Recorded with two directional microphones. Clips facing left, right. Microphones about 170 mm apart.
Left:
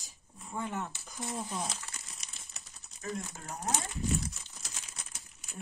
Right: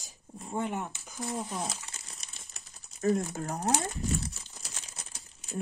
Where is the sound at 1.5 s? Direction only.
5° right (ahead or behind).